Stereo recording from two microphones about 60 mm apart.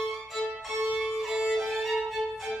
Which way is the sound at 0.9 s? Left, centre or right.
Centre.